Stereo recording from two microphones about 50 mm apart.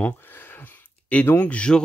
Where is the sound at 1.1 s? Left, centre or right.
Left.